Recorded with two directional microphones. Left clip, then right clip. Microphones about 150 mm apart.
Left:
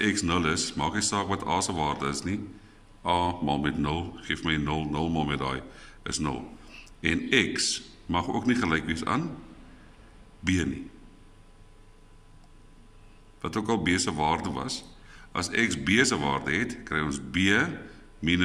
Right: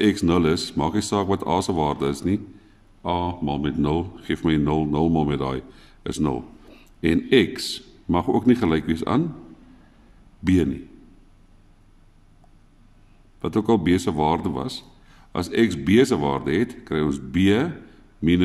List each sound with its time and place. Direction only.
0.0 s speech: 30° right (ahead or behind)
3.0 s speech: 20° right (ahead or behind)
3.8 s speech: 30° right (ahead or behind)
10.4 s speech: 30° right (ahead or behind)
13.4 s speech: 30° right (ahead or behind)